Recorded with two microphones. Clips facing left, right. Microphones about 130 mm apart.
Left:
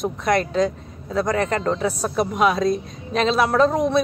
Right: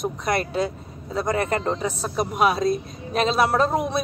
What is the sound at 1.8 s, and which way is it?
Speech, 5° left (ahead or behind).